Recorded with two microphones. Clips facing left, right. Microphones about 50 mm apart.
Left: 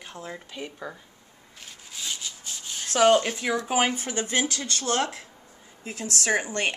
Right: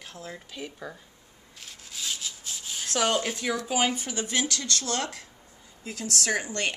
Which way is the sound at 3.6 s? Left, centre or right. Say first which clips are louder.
Left 1 dB; left.